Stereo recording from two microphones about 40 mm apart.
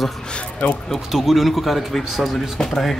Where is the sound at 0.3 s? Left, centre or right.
Left.